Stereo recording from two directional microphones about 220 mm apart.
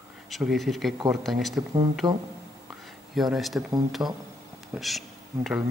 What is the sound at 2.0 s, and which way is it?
Music, 15° right (ahead or behind).